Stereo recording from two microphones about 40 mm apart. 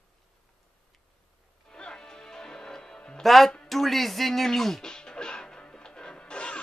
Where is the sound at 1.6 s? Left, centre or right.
Centre.